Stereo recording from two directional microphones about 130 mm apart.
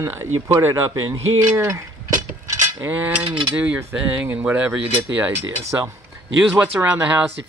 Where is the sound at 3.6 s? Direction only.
15° right (ahead or behind).